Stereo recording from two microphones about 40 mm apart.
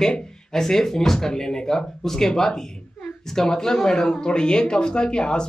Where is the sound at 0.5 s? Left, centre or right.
Centre.